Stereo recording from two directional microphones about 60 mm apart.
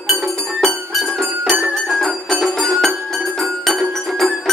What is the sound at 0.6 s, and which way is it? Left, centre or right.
Music, centre.